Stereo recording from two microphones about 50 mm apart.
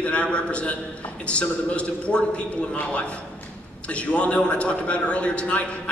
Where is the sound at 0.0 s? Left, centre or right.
Left.